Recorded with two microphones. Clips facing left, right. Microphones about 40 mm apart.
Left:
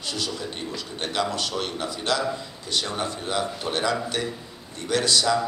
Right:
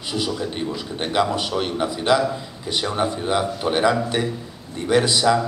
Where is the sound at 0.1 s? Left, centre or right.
Centre.